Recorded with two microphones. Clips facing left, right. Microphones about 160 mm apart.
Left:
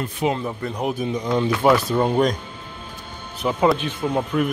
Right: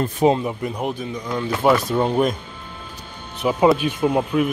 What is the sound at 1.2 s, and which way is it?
Speech, 20° left (ahead or behind).